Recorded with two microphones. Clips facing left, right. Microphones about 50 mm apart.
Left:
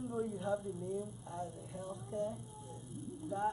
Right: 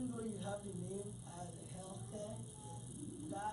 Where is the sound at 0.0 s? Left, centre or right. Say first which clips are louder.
Left 5 dB; left.